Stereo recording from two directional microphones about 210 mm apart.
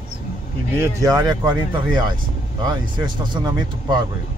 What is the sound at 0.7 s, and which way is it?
Speech, 15° right (ahead or behind).